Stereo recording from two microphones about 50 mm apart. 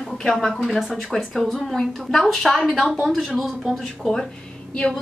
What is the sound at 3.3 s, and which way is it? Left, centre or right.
Speech, centre.